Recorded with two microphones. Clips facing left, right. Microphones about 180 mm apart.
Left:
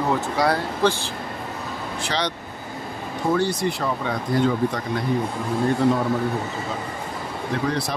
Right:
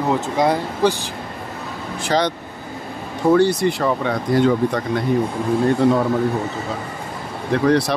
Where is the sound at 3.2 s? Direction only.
65° right (ahead or behind).